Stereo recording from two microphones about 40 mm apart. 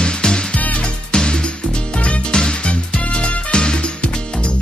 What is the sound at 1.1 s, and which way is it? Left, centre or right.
Music, centre.